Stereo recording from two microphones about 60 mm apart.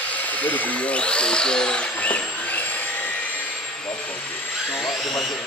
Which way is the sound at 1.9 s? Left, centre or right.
Left.